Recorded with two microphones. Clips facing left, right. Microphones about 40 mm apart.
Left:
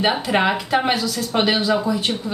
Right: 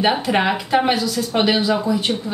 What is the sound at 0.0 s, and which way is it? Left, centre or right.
A woman's voice, centre.